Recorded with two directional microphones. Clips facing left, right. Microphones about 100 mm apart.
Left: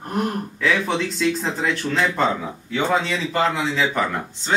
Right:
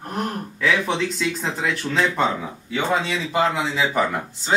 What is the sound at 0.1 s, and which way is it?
Speech, 5° left (ahead or behind).